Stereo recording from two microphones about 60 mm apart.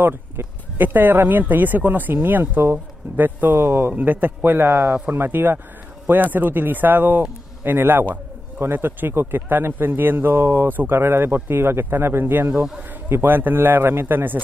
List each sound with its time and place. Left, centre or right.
0.0 s speech: right